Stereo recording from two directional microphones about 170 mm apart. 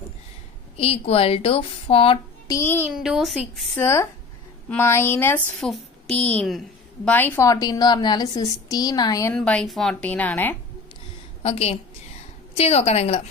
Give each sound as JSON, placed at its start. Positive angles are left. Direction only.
{"t": 0.7, "sound": "a woman's voice", "side_deg": 35}
{"t": 2.4, "sound": "music", "side_deg": 15}
{"t": 2.9, "sound": "speech", "side_deg": -5}
{"t": 3.8, "sound": "a woman's voice", "side_deg": 15}
{"t": 5.6, "sound": "a woman's voice", "side_deg": 0}
{"t": 9.3, "sound": "a woman's voice", "side_deg": 5}
{"t": 11.4, "sound": "a woman's voice", "side_deg": 35}